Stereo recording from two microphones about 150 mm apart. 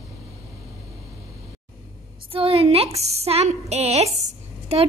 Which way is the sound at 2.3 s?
40° right (ahead or behind).